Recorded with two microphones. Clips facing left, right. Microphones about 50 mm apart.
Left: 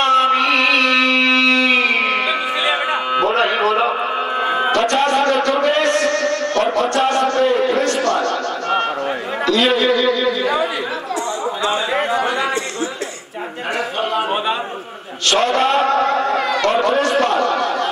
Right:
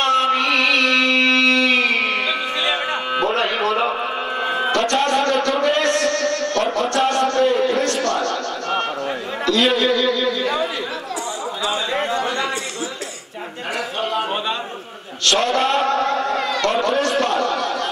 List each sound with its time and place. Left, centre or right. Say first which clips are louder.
0.0 s mantra: left 3 dB; centre
2.6 s music: left 3 dB; centre
4.4 s a sound: left 3 dB; centre
9.5 s chatter: left 2 dB; centre
11.7 s chatter: left 2 dB; centre
15.2 s a sound: left 2 dB; centre
16.6 s speech: left 3 dB; centre
16.9 s chatter: left 3 dB; centre
17.6 s a sound: left 3 dB; centre